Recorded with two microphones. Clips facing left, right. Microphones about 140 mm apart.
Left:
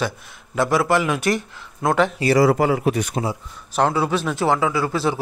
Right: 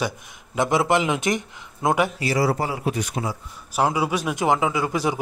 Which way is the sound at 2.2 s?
90° left.